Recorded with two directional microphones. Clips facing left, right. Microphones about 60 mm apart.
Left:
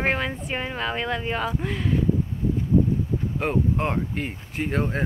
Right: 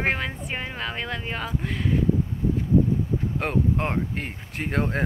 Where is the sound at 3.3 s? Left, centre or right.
Right.